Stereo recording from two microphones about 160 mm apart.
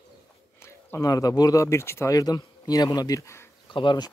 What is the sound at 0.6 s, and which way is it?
Speech, 15° left (ahead or behind).